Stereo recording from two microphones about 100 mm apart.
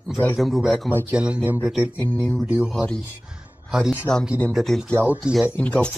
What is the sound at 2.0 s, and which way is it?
Speech, 15° left (ahead or behind).